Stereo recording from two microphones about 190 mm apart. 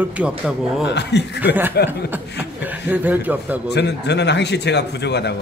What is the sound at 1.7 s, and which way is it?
Speech, 60° left (ahead or behind).